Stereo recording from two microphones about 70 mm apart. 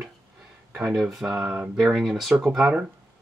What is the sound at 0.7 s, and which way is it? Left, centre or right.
Speech, centre.